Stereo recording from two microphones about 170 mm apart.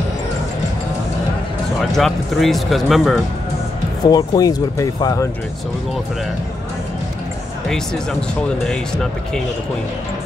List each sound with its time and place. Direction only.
1.8 s speech: centre (ahead or behind)
4.0 s speech: 25° left (ahead or behind)
7.6 s speech: 5° left (ahead or behind)